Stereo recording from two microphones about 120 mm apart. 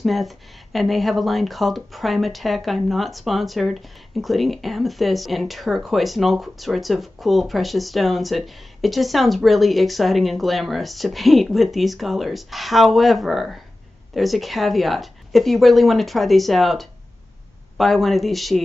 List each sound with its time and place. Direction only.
0.0 s speech: centre (ahead or behind)